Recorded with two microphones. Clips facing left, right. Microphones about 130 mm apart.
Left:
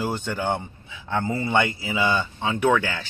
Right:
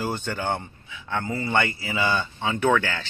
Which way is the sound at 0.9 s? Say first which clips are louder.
Left 3 dB; 25° left (ahead or behind).